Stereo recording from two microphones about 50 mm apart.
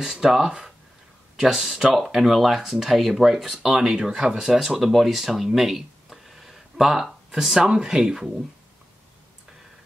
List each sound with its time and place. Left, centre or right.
0.0 s speech: centre